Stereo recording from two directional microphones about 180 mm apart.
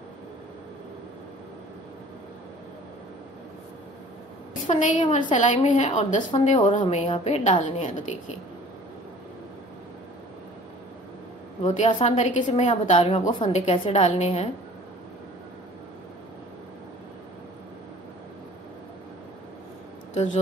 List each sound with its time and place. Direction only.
4.6 s a woman's voice: 45° left (ahead or behind)
11.6 s a woman's voice: 40° left (ahead or behind)